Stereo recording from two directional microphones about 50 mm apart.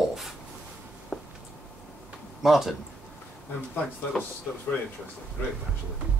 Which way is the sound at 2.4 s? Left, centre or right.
Centre.